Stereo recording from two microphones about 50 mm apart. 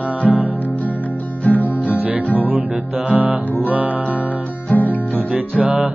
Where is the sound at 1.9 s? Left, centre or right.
Right.